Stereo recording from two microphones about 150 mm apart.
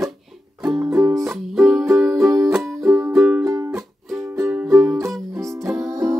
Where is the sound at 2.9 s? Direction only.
15° right (ahead or behind).